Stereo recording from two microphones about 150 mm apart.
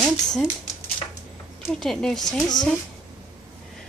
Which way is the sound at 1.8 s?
5° left (ahead or behind).